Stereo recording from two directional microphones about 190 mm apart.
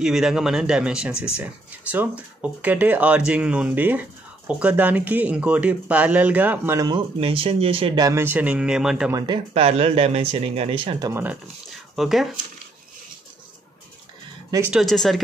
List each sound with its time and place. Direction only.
0.0 s speech: centre (ahead or behind)
7.2 s speech: 30° right (ahead or behind); by 9.1 s 5° right (ahead or behind)
9.1 s speech: 25° right (ahead or behind)
11.9 s speech: centre (ahead or behind)
14.5 s speech: 10° right (ahead or behind)
14.8 s speech: centre (ahead or behind)